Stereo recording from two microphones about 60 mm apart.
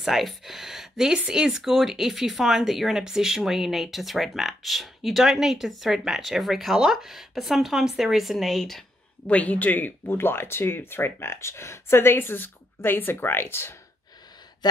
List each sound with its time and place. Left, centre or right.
0.0 s speech: centre
9.3 s speech: left